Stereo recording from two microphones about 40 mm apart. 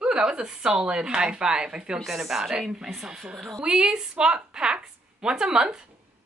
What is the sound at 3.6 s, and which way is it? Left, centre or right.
A woman's voice, right.